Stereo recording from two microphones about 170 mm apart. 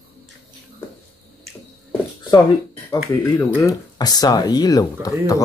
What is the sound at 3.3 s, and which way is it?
Speech, 15° left (ahead or behind).